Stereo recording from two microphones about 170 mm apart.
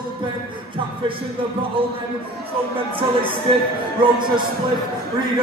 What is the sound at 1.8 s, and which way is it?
Speech, 35° right (ahead or behind).